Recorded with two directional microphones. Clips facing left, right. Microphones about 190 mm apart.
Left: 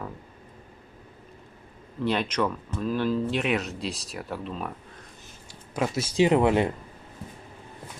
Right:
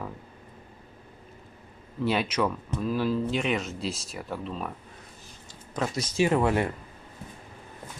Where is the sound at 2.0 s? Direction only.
5° right (ahead or behind).